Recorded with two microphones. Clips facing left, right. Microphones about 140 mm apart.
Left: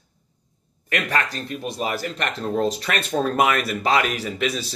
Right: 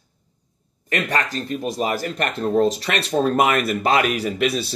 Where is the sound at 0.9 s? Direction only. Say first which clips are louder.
Right 2 dB; 35° right (ahead or behind).